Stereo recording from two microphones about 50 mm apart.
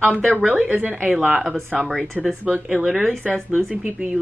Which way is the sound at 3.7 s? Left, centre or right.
Right.